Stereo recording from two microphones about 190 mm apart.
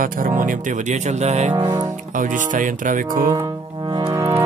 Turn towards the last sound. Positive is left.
turn(degrees=-20)  # may be behind; listen again after turning